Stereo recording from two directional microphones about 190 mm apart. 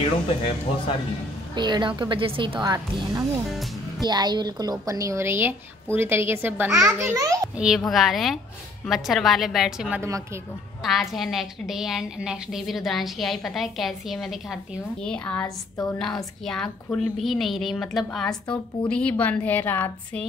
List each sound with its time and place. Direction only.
0.0 s speech: 25° left (ahead or behind)
1.5 s a woman's voice: 25° right (ahead or behind)
7.5 s a woman's voice: 5° right (ahead or behind)
15.4 s a woman's voice: 15° left (ahead or behind)
16.4 s a woman's voice: 5° left (ahead or behind)